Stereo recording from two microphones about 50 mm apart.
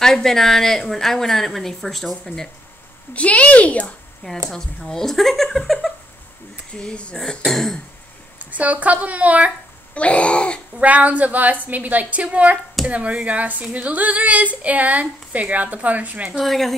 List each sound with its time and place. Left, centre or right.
0.0 s a woman's voice: centre
3.1 s a woman's voice: left
4.5 s a woman's voice: centre
6.7 s a woman's voice: left
7.2 s a woman's voice: centre
8.4 s speech: right
9.9 s a woman's voice: left
10.8 s speech: right
16.3 s speech: centre